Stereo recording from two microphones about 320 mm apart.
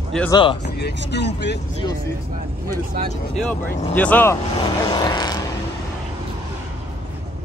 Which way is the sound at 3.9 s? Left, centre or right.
Centre.